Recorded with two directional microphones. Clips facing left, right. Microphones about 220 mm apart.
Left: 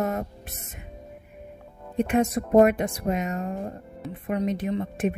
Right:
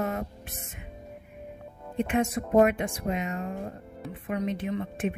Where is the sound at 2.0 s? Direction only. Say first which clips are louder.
Left 4 dB; 40° left (ahead or behind).